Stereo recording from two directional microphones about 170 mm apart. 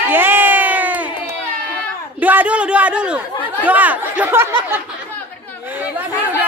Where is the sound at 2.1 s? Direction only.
10° right (ahead or behind).